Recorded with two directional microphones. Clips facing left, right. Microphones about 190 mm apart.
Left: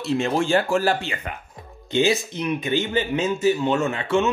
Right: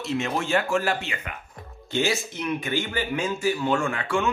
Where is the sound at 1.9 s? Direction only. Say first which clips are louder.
Left 5 dB; 20° left (ahead or behind).